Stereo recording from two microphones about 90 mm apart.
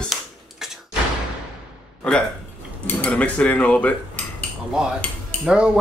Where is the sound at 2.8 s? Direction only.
15° left (ahead or behind).